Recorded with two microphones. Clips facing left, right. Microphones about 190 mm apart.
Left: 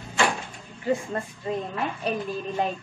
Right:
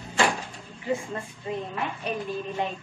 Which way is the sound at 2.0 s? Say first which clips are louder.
Left 4 dB; 35° left (ahead or behind).